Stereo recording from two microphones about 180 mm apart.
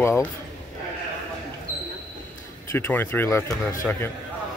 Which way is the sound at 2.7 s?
10° left (ahead or behind).